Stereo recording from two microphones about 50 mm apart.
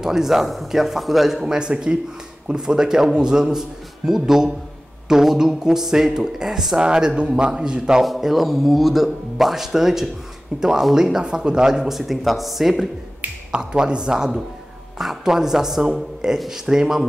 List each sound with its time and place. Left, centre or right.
0.0 s speech: centre
8.0 s speech: centre
13.5 s speech: centre